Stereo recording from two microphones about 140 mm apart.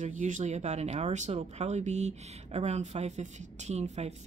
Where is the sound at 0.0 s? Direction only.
60° right (ahead or behind).